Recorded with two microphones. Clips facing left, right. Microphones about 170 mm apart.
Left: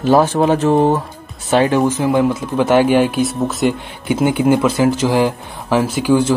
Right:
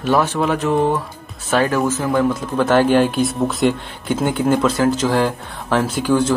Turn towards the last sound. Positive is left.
turn(degrees=10)  # may be behind; listen again after turning